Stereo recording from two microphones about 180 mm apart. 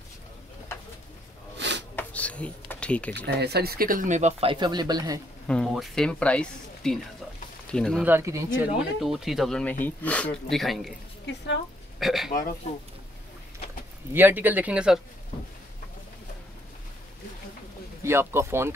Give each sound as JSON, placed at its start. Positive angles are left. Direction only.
{"t": 1.6, "sound": "snort", "side_deg": -80}
{"t": 2.0, "sound": "a sound", "side_deg": 10}
{"t": 3.3, "sound": "speech", "side_deg": -65}
{"t": 5.5, "sound": "speech", "side_deg": 0}
{"t": 8.0, "sound": "speech", "side_deg": -15}
{"t": 9.0, "sound": "speech", "side_deg": 0}
{"t": 12.0, "sound": "speech", "side_deg": 0}
{"t": 14.1, "sound": "speech", "side_deg": -10}
{"t": 18.0, "sound": "speech", "side_deg": -15}